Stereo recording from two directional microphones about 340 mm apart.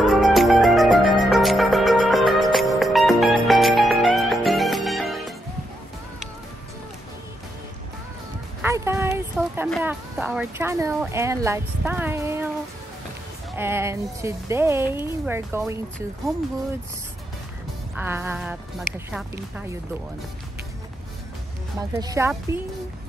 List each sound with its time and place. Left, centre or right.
0.0 s music: centre
8.6 s music: centre
13.6 s speech: centre
17.9 s music: centre
19.1 s a woman's voice: centre
21.9 s speech: centre